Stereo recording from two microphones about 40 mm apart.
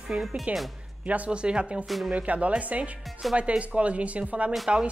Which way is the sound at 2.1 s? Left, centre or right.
Right.